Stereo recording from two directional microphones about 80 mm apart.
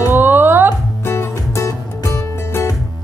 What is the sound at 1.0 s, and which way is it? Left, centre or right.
Music, left.